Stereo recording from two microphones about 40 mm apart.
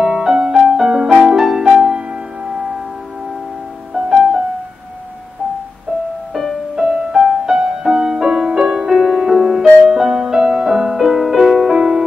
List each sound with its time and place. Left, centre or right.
0.0 s music: centre
3.9 s music: centre
6.7 s music: centre